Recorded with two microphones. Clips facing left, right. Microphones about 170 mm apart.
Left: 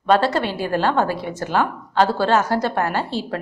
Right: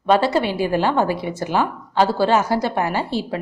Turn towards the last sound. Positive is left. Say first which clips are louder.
# right 1 dB
turn(degrees=-10)  # may be behind; listen again after turning